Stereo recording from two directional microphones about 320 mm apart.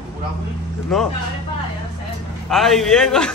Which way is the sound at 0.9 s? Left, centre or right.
Centre.